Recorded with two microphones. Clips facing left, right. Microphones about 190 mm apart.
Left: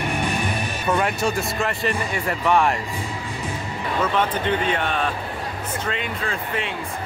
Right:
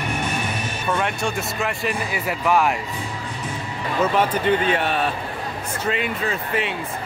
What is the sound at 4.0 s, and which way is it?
Speech, 10° right (ahead or behind).